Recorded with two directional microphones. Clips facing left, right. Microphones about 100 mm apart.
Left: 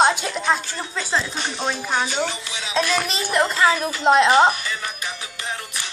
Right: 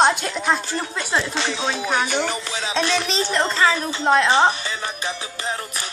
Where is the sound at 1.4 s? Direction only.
90° right.